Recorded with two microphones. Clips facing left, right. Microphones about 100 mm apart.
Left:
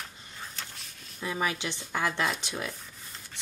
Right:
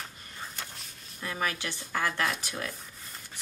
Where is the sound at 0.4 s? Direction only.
5° right (ahead or behind).